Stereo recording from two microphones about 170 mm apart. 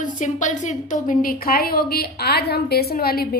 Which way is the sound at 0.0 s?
45° left (ahead or behind).